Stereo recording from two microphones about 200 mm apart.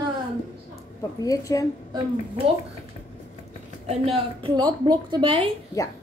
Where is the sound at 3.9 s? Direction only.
30° right (ahead or behind).